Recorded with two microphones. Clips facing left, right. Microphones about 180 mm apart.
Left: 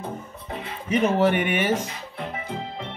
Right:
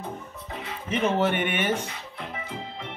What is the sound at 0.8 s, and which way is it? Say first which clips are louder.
Speech: left 4 dB; 10° left (ahead or behind).